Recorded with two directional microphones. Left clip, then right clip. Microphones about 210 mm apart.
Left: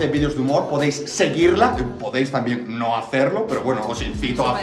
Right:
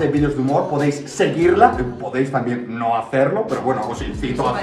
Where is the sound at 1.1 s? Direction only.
15° left (ahead or behind).